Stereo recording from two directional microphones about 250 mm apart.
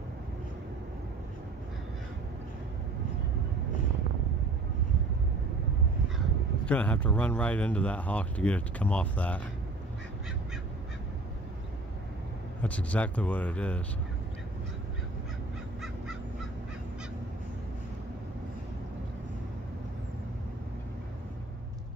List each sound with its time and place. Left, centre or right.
6.6 s speech: centre
12.6 s speech: centre